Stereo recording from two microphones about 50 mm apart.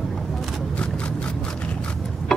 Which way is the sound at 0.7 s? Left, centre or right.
Left.